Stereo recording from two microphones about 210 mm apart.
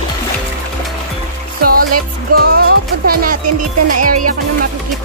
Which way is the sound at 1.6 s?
45° right (ahead or behind).